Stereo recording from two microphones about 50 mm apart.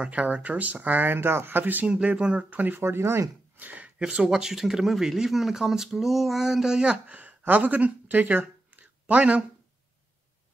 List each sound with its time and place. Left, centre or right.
0.0 s speech: right
1.9 s speech: centre
2.5 s speech: right
2.8 s speech: right
3.5 s a sound: right
4.0 s speech: centre
7.2 s a sound: right